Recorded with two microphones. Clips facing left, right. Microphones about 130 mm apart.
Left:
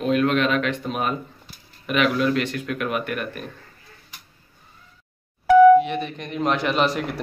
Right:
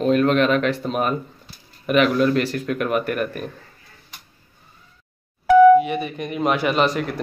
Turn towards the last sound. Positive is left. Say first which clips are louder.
# right 2 dB
turn(degrees=0)  # may be behind; listen again after turning